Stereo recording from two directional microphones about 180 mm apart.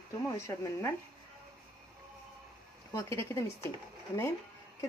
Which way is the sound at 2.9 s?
15° left (ahead or behind).